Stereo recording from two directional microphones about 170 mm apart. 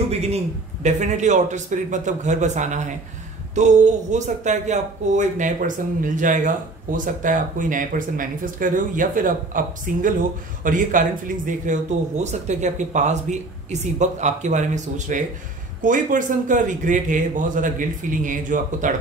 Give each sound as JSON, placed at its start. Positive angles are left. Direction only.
{"t": 0.1, "sound": "a man's voice", "side_deg": -40}